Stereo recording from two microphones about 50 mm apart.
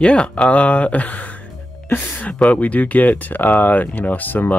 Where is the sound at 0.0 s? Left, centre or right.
Centre.